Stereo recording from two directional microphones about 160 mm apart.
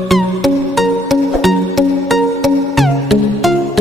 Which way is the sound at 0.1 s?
Centre (ahead or behind).